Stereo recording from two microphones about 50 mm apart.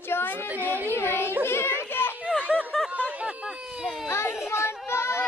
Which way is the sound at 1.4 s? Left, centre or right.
Left.